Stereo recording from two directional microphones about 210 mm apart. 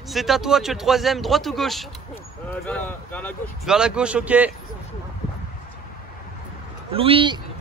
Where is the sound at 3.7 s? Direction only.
5° right (ahead or behind).